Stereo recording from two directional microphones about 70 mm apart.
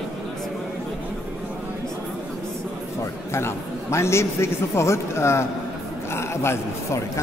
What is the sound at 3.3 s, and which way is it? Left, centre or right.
A man's voice, left.